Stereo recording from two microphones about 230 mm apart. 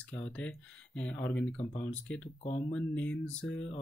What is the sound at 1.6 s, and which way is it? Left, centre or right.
Speech, left.